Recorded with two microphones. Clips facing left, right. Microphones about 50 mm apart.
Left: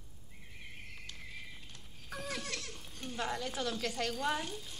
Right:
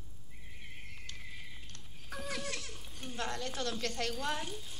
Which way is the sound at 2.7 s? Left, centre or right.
Centre.